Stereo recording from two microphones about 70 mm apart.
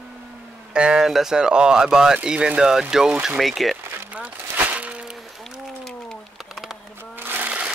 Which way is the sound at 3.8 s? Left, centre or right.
Right.